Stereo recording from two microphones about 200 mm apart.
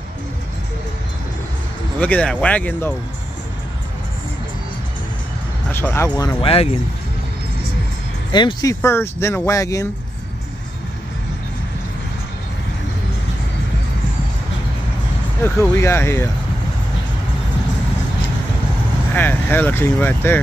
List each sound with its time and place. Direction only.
2.0 s speech: 5° left (ahead or behind)
5.7 s speech: 10° left (ahead or behind); by 6.7 s 30° left (ahead or behind)
8.3 s speech: 20° left (ahead or behind)
15.4 s speech: 10° left (ahead or behind)
19.1 s speech: 10° left (ahead or behind)